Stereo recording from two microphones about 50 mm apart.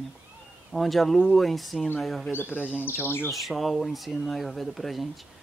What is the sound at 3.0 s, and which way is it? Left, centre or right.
Bird, left.